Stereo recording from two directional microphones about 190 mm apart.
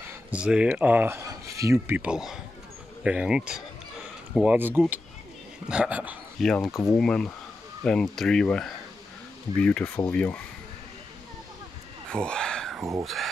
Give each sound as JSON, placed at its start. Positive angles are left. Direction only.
{"t": 0.0, "sound": "speech", "side_deg": -5}
{"t": 6.7, "sound": "speech", "side_deg": 15}
{"t": 7.0, "sound": "speech", "side_deg": 5}
{"t": 12.1, "sound": "a sound", "side_deg": 5}
{"t": 13.0, "sound": "speech", "side_deg": 0}